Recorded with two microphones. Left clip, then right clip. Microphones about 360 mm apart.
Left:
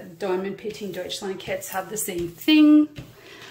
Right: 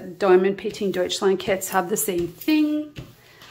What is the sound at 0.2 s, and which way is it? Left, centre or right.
A woman's voice, centre.